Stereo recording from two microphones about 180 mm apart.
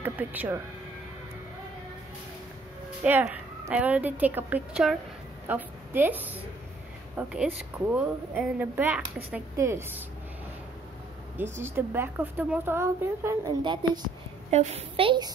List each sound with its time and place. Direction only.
0.0 s a woman's voice: 10° right (ahead or behind)
3.0 s a woman's voice: 5° right (ahead or behind)
11.5 s a woman's voice: 15° right (ahead or behind)
14.5 s a woman's voice: 35° right (ahead or behind)